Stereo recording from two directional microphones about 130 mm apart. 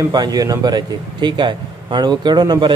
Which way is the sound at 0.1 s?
30° right (ahead or behind).